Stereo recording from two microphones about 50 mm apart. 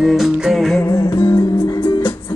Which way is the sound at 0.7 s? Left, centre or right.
Left.